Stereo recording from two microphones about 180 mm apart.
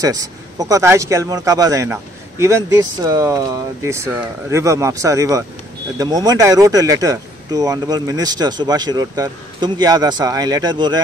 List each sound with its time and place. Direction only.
0.0 s speech: 20° right (ahead or behind)